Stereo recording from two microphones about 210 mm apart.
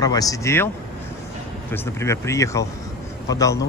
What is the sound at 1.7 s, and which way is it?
Speech, 15° left (ahead or behind).